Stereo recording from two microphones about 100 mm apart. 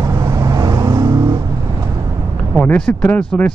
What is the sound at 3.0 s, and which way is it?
Speech, 20° left (ahead or behind).